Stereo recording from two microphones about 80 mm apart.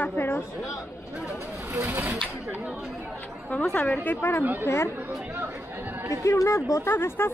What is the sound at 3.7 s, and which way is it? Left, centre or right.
A woman's voice, left.